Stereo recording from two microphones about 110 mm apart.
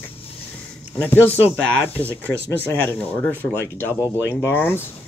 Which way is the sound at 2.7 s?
20° left (ahead or behind).